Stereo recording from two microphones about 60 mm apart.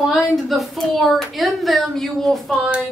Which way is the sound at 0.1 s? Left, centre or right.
Centre.